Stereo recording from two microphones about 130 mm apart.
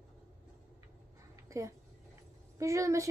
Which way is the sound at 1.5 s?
25° right (ahead or behind).